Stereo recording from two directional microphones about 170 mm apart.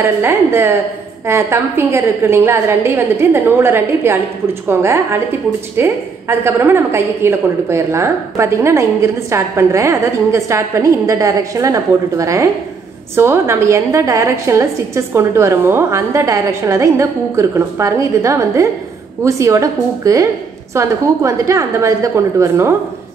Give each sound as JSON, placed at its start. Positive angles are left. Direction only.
{"t": 0.0, "sound": "a woman's voice", "side_deg": -15}